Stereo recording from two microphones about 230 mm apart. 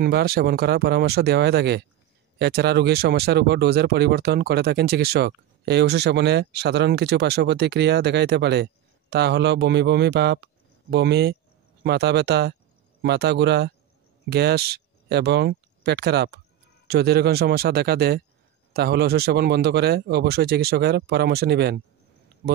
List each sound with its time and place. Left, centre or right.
0.0 s speech: right